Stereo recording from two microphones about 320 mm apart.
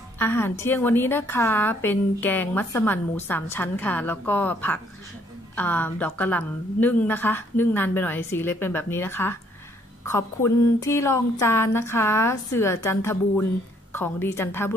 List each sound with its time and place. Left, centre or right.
0.2 s a woman's voice: centre